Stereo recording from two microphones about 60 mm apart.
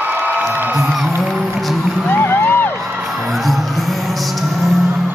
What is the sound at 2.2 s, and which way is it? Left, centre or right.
Music, left.